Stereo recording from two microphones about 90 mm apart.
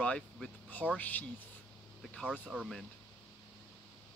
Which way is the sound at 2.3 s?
10° right (ahead or behind).